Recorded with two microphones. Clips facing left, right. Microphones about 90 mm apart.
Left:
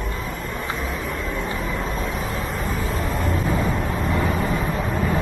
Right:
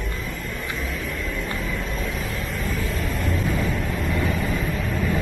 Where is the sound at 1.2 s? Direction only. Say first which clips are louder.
Left 2 dB; 35° left (ahead or behind).